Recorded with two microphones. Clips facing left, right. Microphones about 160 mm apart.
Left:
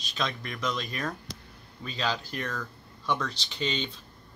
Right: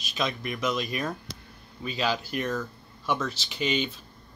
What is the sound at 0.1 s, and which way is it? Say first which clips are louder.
Speech: right 3 dB; 10° right (ahead or behind).